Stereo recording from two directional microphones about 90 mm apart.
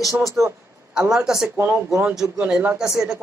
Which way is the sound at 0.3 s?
35° right (ahead or behind).